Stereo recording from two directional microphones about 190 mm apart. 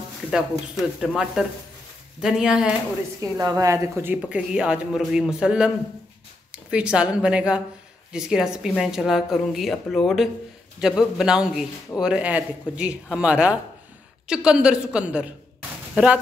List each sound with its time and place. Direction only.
0.3 s a man's voice: centre (ahead or behind)
3.2 s a woman's voice: 15° right (ahead or behind)